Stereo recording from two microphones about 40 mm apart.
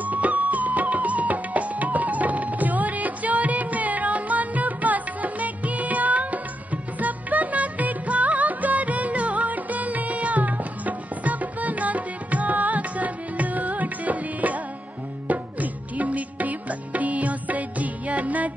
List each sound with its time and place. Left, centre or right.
0.0 s music: right